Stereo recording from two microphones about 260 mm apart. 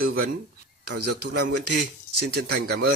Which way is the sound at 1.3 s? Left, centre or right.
Right.